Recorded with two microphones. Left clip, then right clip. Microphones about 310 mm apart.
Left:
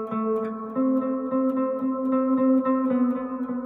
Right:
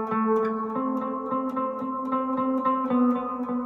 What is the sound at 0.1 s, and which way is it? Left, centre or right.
Music, centre.